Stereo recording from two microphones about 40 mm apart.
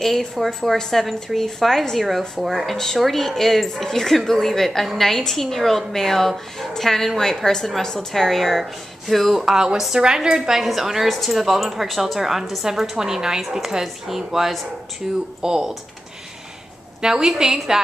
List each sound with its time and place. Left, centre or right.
0.0 s a woman's voice: centre
9.4 s a woman's voice: centre
12.9 s a woman's voice: centre
17.0 s a woman's voice: centre